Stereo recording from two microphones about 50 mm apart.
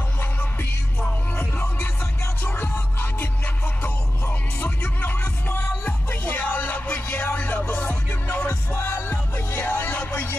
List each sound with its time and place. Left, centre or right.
2.7 s music: left
9.0 s music: left
9.7 s music: left